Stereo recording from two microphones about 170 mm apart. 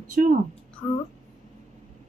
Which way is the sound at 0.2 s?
60° right (ahead or behind).